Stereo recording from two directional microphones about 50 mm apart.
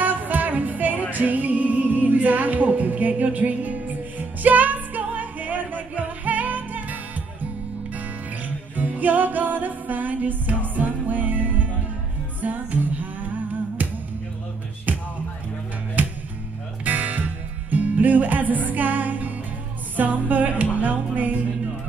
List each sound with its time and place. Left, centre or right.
0.0 s music: right
8.7 s music: right
14.9 s music: right